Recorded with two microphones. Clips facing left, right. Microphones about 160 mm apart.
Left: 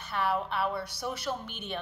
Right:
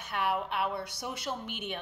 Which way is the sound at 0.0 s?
15° right (ahead or behind).